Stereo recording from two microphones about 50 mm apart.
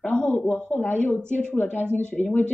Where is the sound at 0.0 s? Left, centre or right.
Left.